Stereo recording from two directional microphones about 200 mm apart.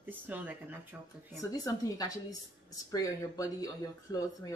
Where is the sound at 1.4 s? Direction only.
15° left (ahead or behind).